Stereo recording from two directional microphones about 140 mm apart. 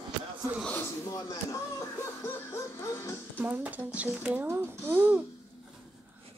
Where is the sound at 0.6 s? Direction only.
10° left (ahead or behind).